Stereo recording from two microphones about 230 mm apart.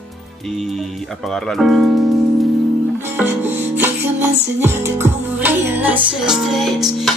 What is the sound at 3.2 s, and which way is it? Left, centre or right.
Music, centre.